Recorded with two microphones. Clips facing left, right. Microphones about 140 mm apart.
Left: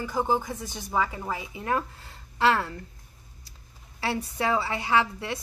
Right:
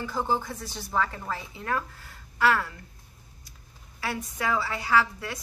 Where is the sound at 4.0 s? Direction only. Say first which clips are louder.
Left 3 dB; 30° left (ahead or behind).